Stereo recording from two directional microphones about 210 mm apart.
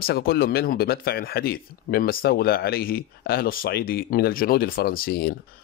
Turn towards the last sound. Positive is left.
turn(degrees=45)  # may be behind; listen again after turning